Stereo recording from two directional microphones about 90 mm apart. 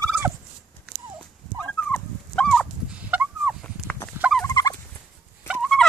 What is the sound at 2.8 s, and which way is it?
Turkey, 15° right (ahead or behind).